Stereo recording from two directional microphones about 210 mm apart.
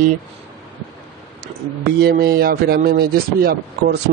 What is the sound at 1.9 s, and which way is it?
Speech, 50° right (ahead or behind).